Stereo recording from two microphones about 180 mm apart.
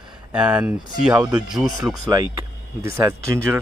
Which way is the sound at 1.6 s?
20° right (ahead or behind).